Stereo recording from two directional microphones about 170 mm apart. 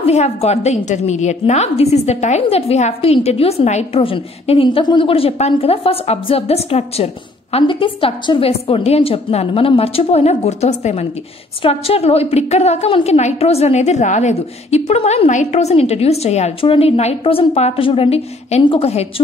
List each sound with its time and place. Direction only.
0.0 s a woman's voice: 40° left (ahead or behind)